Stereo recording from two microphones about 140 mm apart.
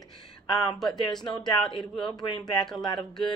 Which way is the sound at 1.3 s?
30° left (ahead or behind).